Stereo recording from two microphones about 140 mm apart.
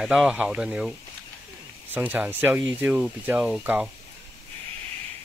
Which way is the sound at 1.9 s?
10° right (ahead or behind).